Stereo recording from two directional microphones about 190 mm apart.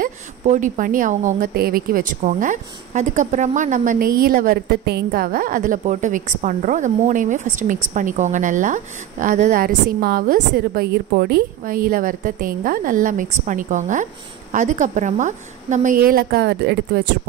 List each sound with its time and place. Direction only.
0.0 s a woman's voice: 45° right (ahead or behind)